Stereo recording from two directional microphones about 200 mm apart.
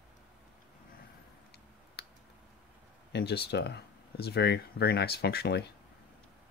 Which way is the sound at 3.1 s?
55° left (ahead or behind).